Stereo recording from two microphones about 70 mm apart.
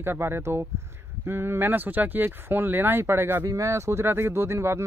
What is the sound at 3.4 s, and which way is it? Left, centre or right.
Speech, right.